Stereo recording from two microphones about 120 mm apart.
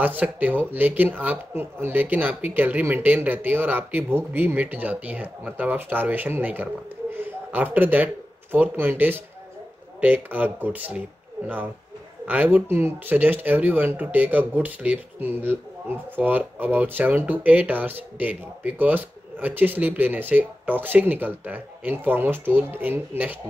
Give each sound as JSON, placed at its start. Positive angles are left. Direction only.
{"t": 0.0, "sound": "speech", "side_deg": -15}
{"t": 12.3, "sound": "speech", "side_deg": -15}